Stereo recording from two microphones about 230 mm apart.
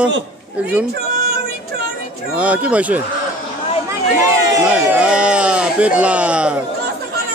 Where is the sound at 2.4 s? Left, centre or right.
Centre.